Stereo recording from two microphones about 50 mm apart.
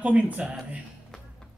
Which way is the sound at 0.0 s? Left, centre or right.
Right.